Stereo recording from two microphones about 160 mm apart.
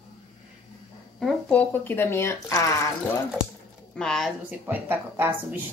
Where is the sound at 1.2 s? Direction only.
10° left (ahead or behind).